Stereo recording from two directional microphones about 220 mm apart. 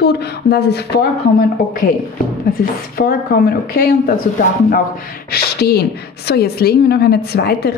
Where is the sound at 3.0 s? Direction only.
45° left (ahead or behind).